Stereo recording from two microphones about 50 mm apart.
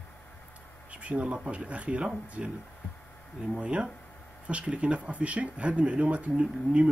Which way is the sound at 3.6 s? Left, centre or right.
Right.